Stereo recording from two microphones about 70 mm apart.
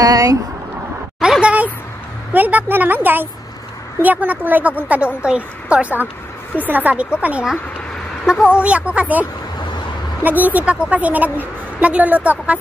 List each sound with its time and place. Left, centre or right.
0.0 s speech: right
1.4 s a sound: right
2.3 s a woman's voice: right
8.5 s a woman's voice: centre